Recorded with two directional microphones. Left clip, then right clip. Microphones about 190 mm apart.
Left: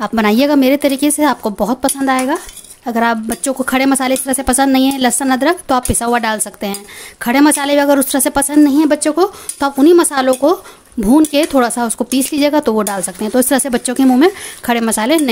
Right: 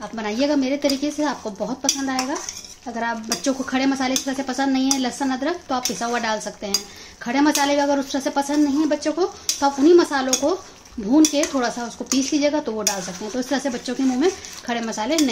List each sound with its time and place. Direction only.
0.0 s speech: 60° left (ahead or behind)